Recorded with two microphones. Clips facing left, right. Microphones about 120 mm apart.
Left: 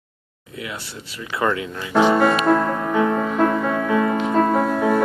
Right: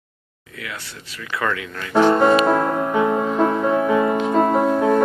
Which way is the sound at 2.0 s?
10° left (ahead or behind).